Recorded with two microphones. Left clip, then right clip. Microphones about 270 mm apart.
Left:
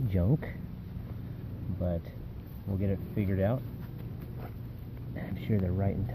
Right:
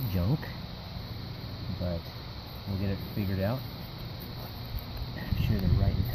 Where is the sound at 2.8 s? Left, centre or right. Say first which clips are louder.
Left 2 dB; centre.